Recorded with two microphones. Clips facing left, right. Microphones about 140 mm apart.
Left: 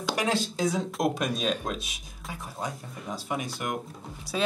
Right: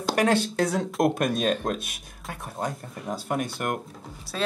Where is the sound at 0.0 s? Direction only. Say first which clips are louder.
Right 5 dB; 60° right (ahead or behind).